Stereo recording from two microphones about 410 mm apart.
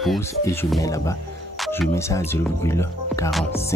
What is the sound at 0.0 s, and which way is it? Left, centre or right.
Speech, centre.